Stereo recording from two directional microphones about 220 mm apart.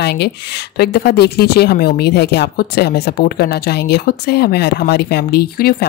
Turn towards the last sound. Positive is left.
turn(degrees=45)  # may be behind; listen again after turning